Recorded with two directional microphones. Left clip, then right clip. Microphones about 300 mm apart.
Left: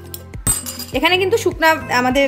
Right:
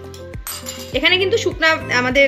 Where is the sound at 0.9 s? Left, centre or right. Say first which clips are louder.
Even; left.